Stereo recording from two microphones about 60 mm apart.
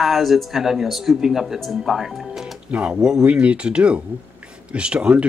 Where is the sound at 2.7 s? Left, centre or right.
Right.